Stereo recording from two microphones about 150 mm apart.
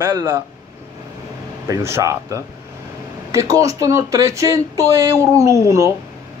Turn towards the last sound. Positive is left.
turn(degrees=-20)  # may be behind; listen again after turning